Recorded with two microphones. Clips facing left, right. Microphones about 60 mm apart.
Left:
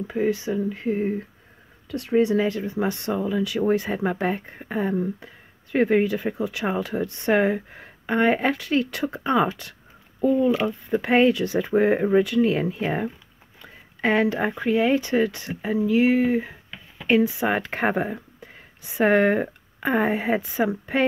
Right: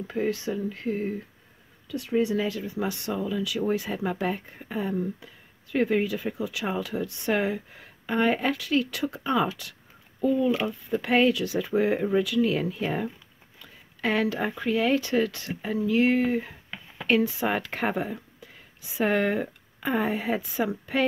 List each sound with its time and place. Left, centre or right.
0.0 s speech: centre
1.9 s speech: left
10.5 s speech: centre
11.0 s speech: left